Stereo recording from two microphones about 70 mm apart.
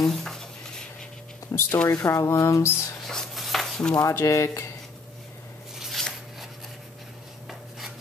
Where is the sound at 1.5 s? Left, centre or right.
Left.